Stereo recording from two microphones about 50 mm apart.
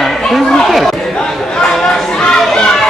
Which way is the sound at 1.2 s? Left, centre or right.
Centre.